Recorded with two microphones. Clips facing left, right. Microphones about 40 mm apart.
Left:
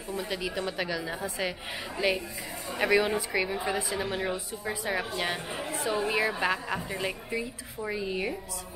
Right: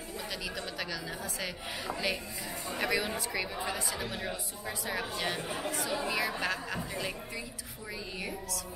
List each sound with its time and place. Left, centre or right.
0.1 s a woman's voice: centre